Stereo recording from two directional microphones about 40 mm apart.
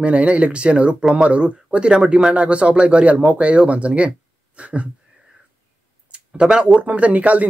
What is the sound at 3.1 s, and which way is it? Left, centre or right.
Speech, centre.